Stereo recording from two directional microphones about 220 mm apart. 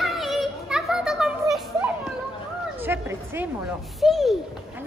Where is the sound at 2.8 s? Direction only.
10° right (ahead or behind).